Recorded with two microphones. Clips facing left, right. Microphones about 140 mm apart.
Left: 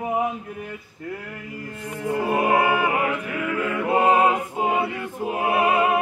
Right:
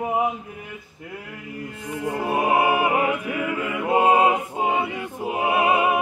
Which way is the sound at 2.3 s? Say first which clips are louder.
Even; 15° right (ahead or behind).